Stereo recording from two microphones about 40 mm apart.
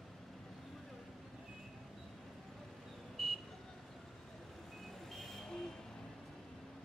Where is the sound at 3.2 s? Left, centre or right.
Centre.